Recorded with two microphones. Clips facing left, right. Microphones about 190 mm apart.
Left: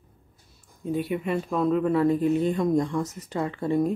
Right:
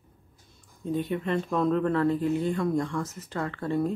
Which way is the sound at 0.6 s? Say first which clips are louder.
Left 1 dB; 10° left (ahead or behind).